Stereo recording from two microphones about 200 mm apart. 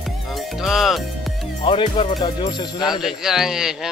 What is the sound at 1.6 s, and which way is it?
Music, 25° left (ahead or behind).